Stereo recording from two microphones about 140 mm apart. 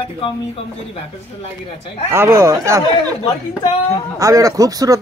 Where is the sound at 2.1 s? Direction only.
20° right (ahead or behind).